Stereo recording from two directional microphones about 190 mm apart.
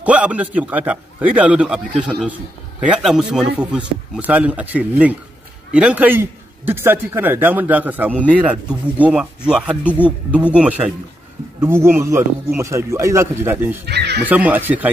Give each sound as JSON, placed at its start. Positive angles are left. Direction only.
{"t": 0.0, "sound": "a man's voice", "side_deg": -5}
{"t": 13.8, "sound": "speech", "side_deg": -60}
{"t": 14.2, "sound": "a man's voice", "side_deg": -10}